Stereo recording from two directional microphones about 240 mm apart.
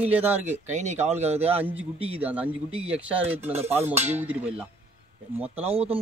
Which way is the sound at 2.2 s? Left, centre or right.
Centre.